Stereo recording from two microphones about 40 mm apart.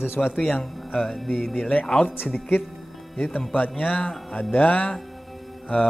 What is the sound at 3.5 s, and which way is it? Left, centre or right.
Speech, left.